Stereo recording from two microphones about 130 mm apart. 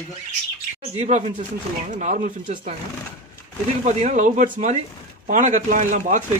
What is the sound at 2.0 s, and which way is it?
Speech, 70° right (ahead or behind).